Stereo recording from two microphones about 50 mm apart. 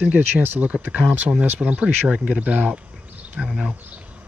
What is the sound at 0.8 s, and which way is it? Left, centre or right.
Speech, right.